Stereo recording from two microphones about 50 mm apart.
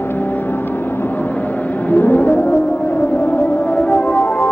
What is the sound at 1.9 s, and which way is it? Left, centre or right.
Music, left.